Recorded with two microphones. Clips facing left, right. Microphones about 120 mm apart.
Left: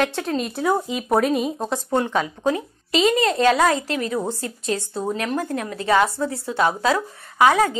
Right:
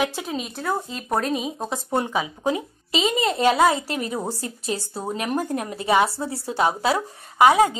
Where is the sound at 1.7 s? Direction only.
10° right (ahead or behind).